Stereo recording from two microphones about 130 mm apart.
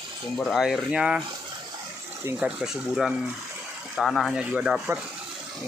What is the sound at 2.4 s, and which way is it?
Speech, 5° right (ahead or behind).